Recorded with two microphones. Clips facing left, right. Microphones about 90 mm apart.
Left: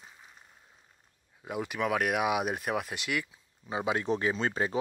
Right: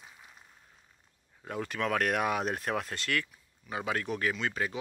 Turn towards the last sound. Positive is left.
turn(degrees=30)  # may be behind; listen again after turning